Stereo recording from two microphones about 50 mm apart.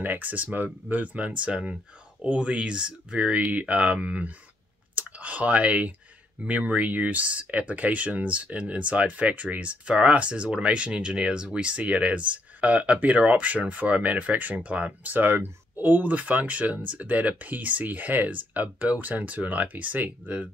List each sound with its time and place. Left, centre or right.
0.0 s speech: right
15.1 s speech: right